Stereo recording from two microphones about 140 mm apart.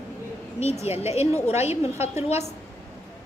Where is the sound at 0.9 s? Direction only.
50° left (ahead or behind).